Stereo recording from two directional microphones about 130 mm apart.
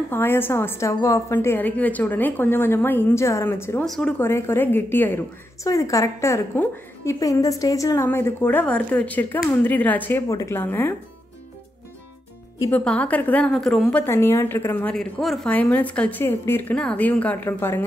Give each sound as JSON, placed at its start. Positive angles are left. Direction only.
{"t": 0.1, "sound": "a woman's voice", "side_deg": 15}
{"t": 3.8, "sound": "speech", "side_deg": 5}
{"t": 4.2, "sound": "a woman's voice", "side_deg": 20}
{"t": 10.2, "sound": "a woman's voice", "side_deg": 25}
{"t": 12.7, "sound": "a woman's voice", "side_deg": 10}
{"t": 14.0, "sound": "a woman's voice", "side_deg": 20}
{"t": 15.0, "sound": "a woman's voice", "side_deg": 0}